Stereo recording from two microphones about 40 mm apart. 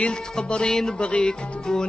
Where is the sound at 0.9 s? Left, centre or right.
Left.